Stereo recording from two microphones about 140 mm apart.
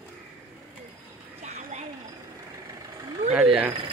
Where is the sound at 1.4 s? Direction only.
55° right (ahead or behind).